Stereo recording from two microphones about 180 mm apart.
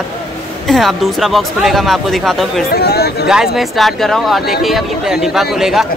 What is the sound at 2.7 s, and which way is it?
Speech, 65° left (ahead or behind).